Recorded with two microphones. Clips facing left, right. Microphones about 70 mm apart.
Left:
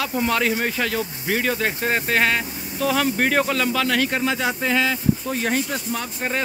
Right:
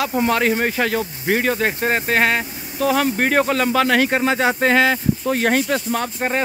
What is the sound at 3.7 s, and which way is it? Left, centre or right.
Speech, right.